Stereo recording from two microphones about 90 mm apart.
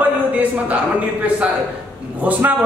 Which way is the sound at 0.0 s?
15° right (ahead or behind).